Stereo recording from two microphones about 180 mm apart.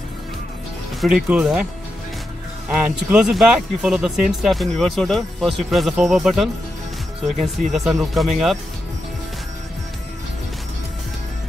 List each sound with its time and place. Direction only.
1.0 s speech: 5° right (ahead or behind)
2.7 s speech: 5° right (ahead or behind)
7.7 s speech: centre (ahead or behind)